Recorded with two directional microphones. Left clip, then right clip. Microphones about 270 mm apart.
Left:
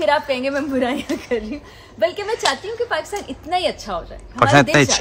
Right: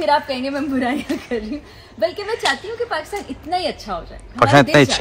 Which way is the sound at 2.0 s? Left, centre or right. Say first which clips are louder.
Left 1 dB; centre.